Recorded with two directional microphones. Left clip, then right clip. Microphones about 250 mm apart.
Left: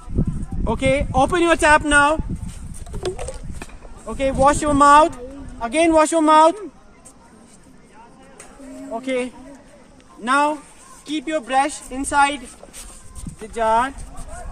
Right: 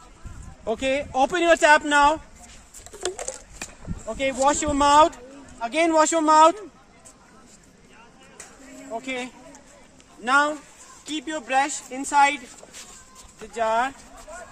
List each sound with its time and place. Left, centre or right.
0.7 s speech: left
3.0 s a sound: centre
4.1 s speech: left
10.2 s speech: left